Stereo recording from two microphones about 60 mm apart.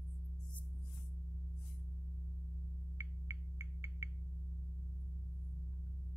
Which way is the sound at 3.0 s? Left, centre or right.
Right.